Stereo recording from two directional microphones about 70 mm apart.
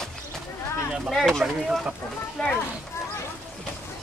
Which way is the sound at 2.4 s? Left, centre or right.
Centre.